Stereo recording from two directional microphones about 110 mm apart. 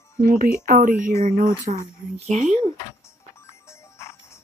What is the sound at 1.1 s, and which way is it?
Speech, 25° left (ahead or behind).